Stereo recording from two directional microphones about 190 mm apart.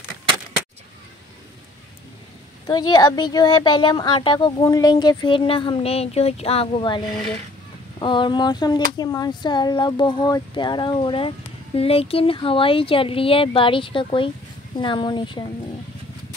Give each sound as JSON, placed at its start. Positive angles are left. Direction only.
{"t": 2.6, "sound": "speech", "side_deg": 20}